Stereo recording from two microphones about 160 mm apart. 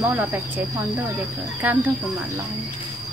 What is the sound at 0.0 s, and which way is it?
Speech, 10° right (ahead or behind).